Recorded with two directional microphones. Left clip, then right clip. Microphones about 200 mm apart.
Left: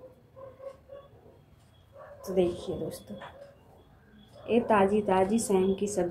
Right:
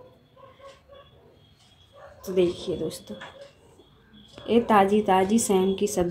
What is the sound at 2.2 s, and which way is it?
Speech, 35° right (ahead or behind).